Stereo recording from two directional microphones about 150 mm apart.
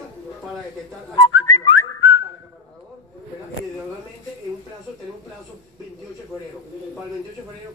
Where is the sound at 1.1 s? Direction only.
30° left (ahead or behind).